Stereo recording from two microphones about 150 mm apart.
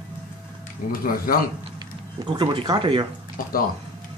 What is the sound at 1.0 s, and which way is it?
Speech, 75° left (ahead or behind).